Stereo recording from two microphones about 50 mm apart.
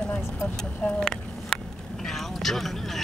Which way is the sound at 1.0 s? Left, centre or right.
Centre.